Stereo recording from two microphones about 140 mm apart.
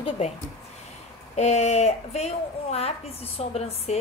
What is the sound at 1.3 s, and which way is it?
Speech, 55° left (ahead or behind).